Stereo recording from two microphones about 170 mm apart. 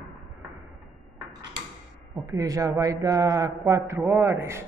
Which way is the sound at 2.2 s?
20° right (ahead or behind).